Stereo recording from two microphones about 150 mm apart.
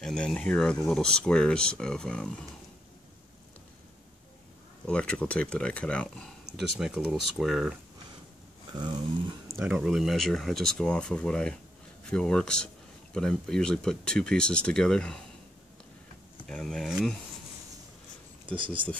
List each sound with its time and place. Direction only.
0.0 s speech: 5° left (ahead or behind)
4.8 s speech: 5° left (ahead or behind)
9.6 s speech: 5° right (ahead or behind)
16.4 s speech: 5° left (ahead or behind)